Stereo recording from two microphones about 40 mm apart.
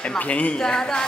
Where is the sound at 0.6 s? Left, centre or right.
Centre.